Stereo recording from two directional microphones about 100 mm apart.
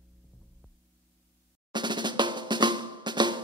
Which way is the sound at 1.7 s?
50° right (ahead or behind).